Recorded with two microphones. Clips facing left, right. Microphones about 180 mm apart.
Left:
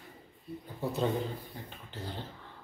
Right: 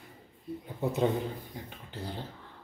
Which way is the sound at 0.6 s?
20° right (ahead or behind).